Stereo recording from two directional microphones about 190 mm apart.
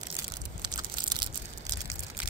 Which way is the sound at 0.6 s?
25° right (ahead or behind).